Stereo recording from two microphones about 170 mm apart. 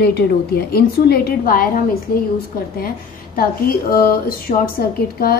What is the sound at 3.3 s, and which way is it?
A woman's voice, 60° left (ahead or behind).